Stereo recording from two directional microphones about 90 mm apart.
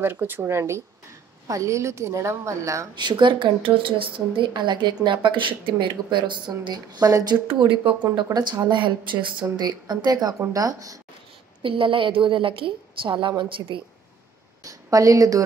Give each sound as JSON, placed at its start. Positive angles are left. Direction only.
{"t": 0.0, "sound": "a woman's voice", "side_deg": -25}
{"t": 3.0, "sound": "a woman's voice", "side_deg": -60}
{"t": 7.5, "sound": "a woman's voice", "side_deg": -70}
{"t": 8.2, "sound": "a woman's voice", "side_deg": -50}
{"t": 10.5, "sound": "a woman's voice", "side_deg": -40}
{"t": 11.6, "sound": "a woman's voice", "side_deg": -80}
{"t": 14.6, "sound": "a woman's voice", "side_deg": -40}